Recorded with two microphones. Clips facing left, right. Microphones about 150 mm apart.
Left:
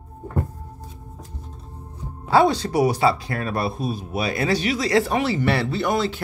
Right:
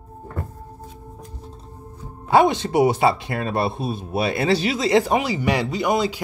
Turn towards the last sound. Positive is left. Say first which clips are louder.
# right 1 dB
turn(degrees=-15)  # may be behind; listen again after turning